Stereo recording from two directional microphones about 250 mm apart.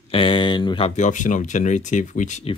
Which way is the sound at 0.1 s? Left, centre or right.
Centre.